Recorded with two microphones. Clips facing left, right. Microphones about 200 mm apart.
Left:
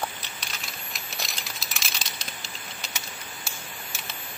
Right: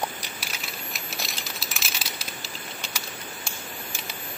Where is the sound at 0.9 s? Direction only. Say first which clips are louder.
Even; centre (ahead or behind).